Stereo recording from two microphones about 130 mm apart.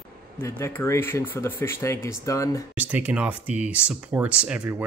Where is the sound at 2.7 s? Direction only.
10° right (ahead or behind).